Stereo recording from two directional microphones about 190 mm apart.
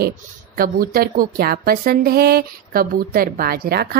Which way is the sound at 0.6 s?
50° right (ahead or behind).